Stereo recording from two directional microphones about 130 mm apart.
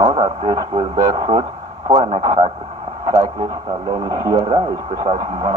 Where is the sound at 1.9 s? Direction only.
55° right (ahead or behind).